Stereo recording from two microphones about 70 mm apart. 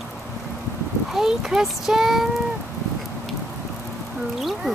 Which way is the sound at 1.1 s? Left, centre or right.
Centre.